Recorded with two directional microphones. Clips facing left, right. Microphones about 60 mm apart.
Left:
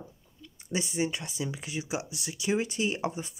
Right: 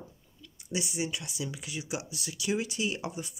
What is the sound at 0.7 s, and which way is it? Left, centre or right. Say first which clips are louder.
Speech: left 3 dB; left.